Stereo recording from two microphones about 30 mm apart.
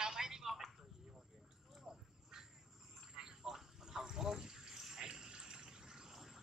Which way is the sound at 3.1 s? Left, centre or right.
Right.